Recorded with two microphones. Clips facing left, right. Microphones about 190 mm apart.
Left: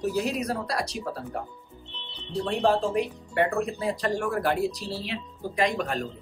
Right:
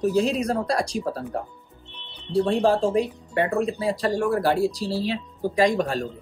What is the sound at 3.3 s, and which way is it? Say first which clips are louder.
Speech: right 2 dB; 25° right (ahead or behind).